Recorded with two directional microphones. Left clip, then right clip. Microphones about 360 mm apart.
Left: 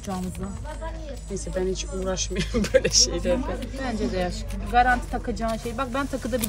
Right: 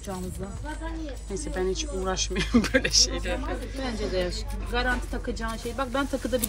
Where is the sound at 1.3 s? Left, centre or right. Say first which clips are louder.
Left 1 dB; centre.